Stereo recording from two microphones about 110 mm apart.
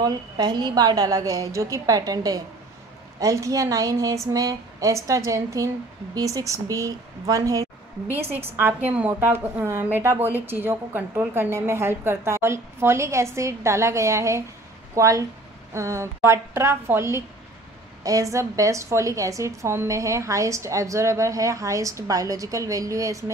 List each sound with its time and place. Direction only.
0.0 s speech: 40° right (ahead or behind)
8.1 s a woman's voice: 20° right (ahead or behind)